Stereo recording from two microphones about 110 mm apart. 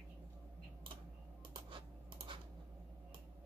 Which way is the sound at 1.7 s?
50° right (ahead or behind).